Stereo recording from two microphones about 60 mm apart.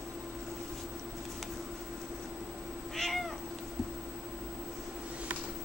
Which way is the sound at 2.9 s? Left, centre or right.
Centre.